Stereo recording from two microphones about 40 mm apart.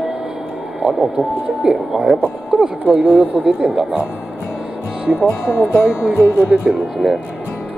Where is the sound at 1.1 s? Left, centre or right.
Right.